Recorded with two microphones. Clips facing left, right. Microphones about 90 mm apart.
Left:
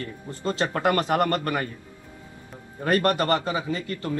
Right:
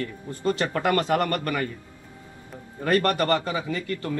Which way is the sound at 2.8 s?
25° left (ahead or behind).